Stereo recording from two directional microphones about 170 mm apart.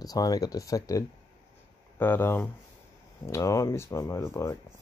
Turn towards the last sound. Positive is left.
turn(degrees=15)  # may be behind; listen again after turning